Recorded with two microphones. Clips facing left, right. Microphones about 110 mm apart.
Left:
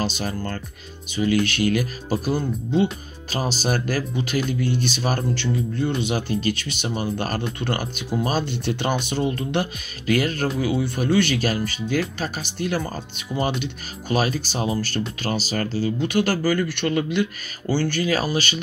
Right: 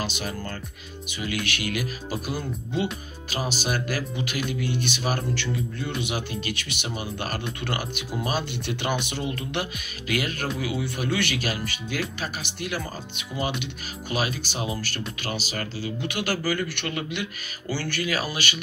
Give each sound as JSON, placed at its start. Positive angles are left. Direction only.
{"t": 0.0, "sound": "speech", "side_deg": 35}